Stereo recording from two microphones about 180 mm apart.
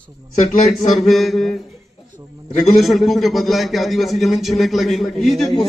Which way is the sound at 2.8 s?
Centre (ahead or behind).